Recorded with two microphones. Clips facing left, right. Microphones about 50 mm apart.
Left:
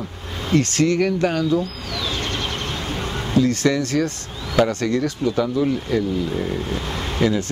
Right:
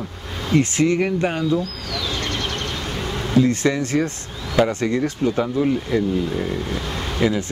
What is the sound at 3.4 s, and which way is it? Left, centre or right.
Speech, right.